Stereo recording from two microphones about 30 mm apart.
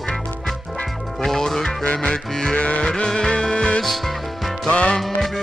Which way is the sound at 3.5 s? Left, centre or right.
Left.